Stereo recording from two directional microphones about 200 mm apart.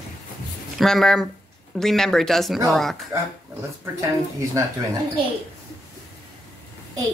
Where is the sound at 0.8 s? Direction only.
Centre (ahead or behind).